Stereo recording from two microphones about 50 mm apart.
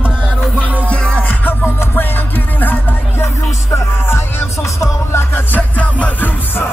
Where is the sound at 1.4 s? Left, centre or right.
Left.